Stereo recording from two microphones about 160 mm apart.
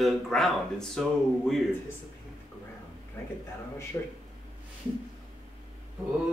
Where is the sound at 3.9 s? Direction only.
20° left (ahead or behind).